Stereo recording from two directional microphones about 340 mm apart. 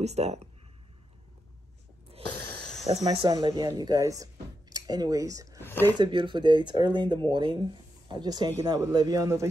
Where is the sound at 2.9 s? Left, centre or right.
Centre.